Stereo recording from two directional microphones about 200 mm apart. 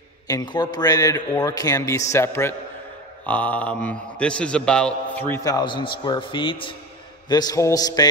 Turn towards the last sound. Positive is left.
turn(degrees=20)  # may be behind; listen again after turning